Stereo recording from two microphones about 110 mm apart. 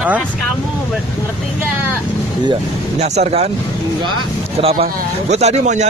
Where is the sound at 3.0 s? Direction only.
70° right (ahead or behind).